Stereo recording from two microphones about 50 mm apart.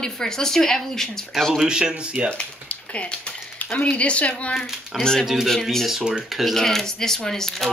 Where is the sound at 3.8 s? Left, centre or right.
Left.